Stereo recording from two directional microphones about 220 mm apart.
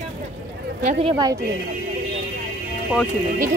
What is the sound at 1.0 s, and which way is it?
Speech, 20° right (ahead or behind).